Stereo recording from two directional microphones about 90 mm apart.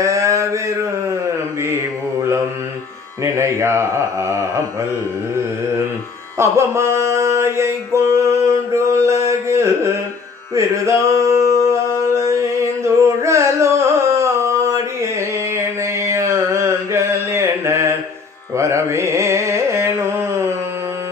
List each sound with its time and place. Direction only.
0.0 s a sound: 35° right (ahead or behind)
3.3 s a man's voice: 30° right (ahead or behind)
6.3 s mantra: 30° right (ahead or behind)
10.5 s music: 35° right (ahead or behind)
12.1 s carnatic music: 35° right (ahead or behind)